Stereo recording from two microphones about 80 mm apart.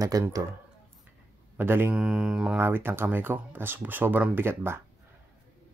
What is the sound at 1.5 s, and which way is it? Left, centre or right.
Speech, right.